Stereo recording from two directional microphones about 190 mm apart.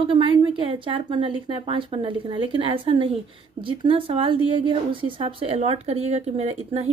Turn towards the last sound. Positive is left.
turn(degrees=-35)  # may be behind; listen again after turning